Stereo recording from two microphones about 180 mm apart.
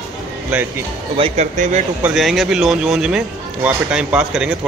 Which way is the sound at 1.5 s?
45° right (ahead or behind).